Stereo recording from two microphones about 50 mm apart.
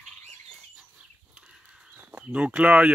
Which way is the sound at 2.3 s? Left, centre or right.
Right.